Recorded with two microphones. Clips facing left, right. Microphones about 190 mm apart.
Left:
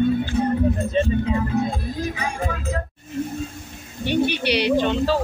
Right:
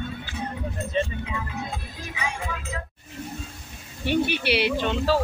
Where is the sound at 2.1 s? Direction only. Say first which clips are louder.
Left 5 dB; 40° left (ahead or behind).